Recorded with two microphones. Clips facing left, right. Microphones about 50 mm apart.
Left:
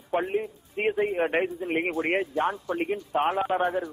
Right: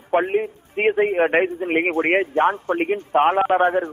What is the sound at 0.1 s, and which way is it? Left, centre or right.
A man's voice, right.